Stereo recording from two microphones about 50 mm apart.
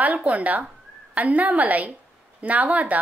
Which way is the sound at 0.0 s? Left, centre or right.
Right.